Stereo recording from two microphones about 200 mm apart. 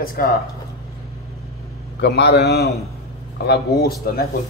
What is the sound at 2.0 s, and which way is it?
Speech, 55° left (ahead or behind).